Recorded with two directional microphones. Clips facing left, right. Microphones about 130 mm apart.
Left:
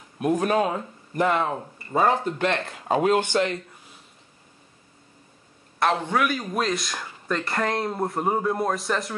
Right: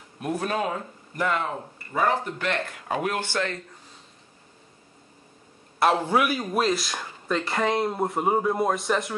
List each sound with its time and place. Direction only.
0.6 s speech: 25° left (ahead or behind)
5.8 s speech: 10° right (ahead or behind)